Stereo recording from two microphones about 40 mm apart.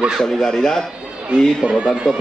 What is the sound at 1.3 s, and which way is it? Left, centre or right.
Speech, right.